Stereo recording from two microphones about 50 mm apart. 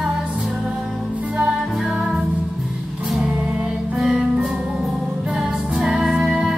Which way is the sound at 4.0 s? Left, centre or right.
Centre.